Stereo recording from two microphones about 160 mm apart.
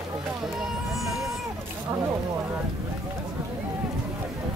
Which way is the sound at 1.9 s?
15° right (ahead or behind).